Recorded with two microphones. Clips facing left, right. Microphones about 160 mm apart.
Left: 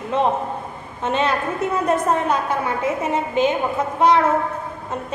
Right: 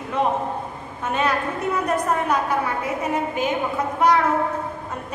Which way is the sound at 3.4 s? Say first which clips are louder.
Left 4 dB; 25° left (ahead or behind).